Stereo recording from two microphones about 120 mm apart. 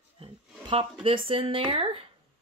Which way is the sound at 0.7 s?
50° right (ahead or behind).